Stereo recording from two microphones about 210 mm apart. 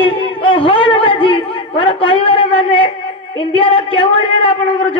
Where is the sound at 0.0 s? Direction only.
25° left (ahead or behind).